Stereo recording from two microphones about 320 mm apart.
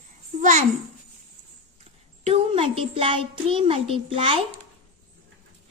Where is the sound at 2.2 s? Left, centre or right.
Centre.